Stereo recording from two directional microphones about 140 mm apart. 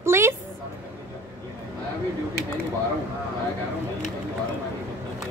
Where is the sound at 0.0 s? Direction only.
20° right (ahead or behind).